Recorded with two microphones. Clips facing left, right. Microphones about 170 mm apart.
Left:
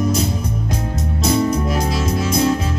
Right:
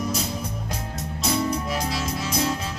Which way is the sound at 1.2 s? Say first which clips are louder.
Left 7 dB; 45° left (ahead or behind).